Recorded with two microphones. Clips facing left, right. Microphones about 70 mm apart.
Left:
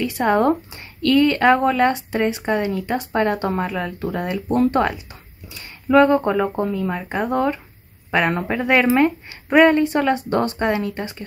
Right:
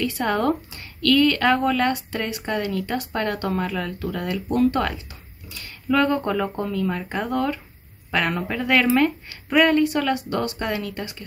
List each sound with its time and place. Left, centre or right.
0.0 s speech: left